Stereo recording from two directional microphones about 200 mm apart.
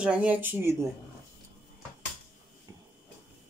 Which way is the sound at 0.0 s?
5° right (ahead or behind).